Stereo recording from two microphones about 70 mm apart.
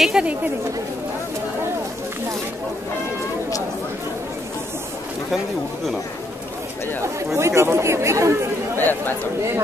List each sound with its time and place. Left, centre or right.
0.0 s speech: centre
7.3 s speech: right
8.7 s speech: left